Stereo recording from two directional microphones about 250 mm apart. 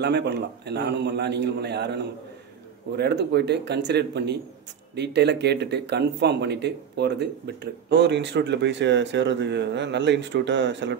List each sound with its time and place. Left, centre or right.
0.0 s a man's voice: right